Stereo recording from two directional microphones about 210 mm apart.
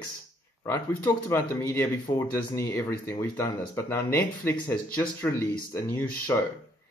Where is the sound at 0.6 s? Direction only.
10° left (ahead or behind).